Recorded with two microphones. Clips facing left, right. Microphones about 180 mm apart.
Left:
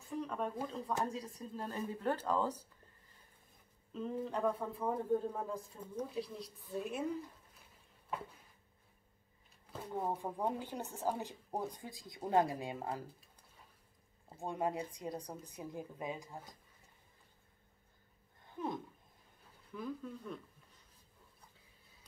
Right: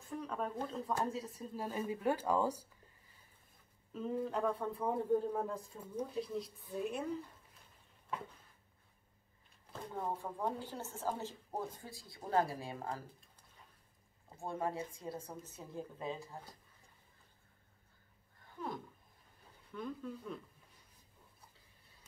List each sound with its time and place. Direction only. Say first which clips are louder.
0.1 s speech: left 1 dB; centre (ahead or behind)
3.9 s speech: right 1 dB; 5° right (ahead or behind)
9.9 s speech: left 2 dB; 15° left (ahead or behind)
14.3 s speech: left 2 dB; 15° left (ahead or behind)
18.6 s a sound: left 3 dB; 20° left (ahead or behind)
19.7 s speech: even; centre (ahead or behind)